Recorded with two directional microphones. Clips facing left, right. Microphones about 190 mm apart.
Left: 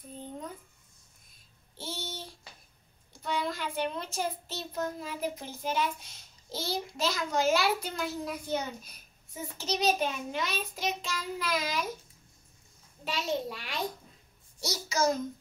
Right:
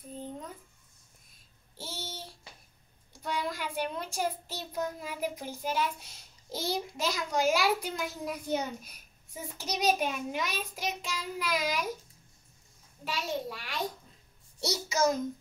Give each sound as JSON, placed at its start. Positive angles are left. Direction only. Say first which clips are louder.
{"t": 1.8, "sound": "child singing", "louder": "left 2 dB", "side_deg": -5}
{"t": 3.2, "sound": "a child's voice", "louder": "left 1 dB", "side_deg": -10}
{"t": 13.0, "sound": "a child's voice", "louder": "left 2 dB", "side_deg": 20}
{"t": 14.6, "sound": "a child's voice", "louder": "right 1 dB", "side_deg": -25}